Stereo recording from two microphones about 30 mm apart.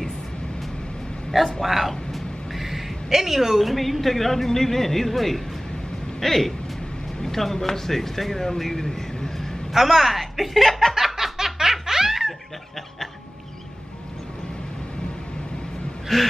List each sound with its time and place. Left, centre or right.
1.6 s a sound: centre
3.1 s a woman's voice: centre
9.8 s a woman's voice: centre
10.7 s a sound: centre
11.3 s laughter: centre
16.1 s speech: centre